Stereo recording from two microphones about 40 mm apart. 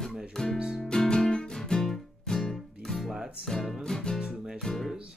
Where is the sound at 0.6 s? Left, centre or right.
Centre.